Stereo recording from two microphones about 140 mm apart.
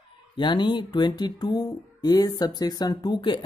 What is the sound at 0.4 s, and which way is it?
Speech, 35° left (ahead or behind).